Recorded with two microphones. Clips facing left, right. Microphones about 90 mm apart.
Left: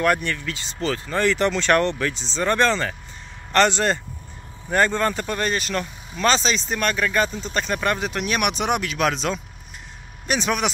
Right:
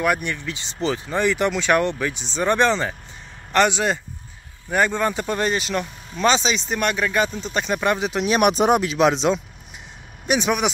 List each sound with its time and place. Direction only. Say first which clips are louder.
0.0 s speech: left 1 dB; 15° right (ahead or behind)
3.5 s speech: even; 5° right (ahead or behind)
8.4 s speech: right 7 dB; 35° right (ahead or behind); by 10.7 s 15° right (ahead or behind)